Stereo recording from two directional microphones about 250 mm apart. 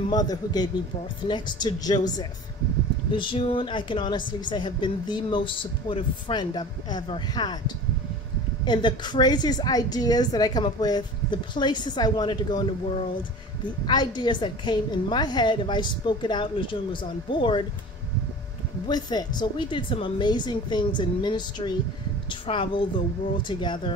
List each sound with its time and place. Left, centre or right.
0.1 s a woman's voice: centre
13.8 s a woman's voice: centre
18.9 s a woman's voice: centre